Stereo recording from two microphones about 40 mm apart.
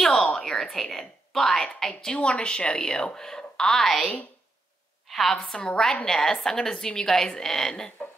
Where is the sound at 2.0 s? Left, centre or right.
Left.